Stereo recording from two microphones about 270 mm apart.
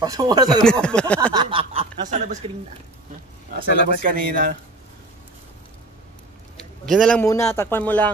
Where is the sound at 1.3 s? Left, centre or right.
Centre.